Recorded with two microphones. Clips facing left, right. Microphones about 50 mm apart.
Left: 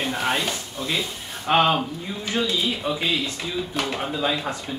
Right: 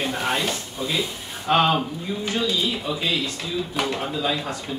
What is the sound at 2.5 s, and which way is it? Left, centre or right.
Speech, centre.